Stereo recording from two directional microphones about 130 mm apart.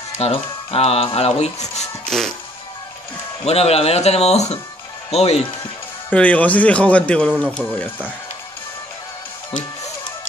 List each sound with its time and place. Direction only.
0.2 s speech: 50° left (ahead or behind)
2.0 s speech: 5° left (ahead or behind)
3.4 s speech: 50° left (ahead or behind)
6.0 s speech: 10° left (ahead or behind)